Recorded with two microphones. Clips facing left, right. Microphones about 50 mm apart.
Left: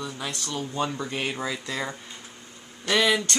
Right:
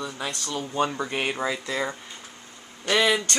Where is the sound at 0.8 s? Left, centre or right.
Centre.